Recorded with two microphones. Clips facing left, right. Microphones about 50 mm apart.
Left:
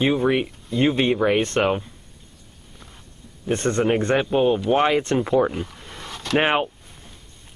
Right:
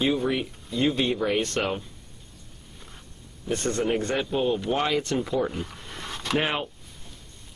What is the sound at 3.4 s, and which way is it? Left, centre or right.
A man's voice, left.